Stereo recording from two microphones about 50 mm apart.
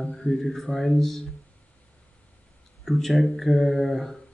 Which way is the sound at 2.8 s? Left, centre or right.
Centre.